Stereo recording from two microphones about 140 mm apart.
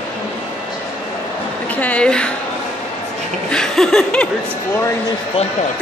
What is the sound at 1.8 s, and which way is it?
Speech, 5° left (ahead or behind).